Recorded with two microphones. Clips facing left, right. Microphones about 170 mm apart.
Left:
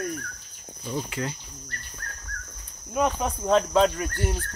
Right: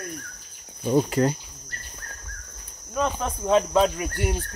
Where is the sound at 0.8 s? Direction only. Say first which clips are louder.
Right 10 dB; 50° right (ahead or behind).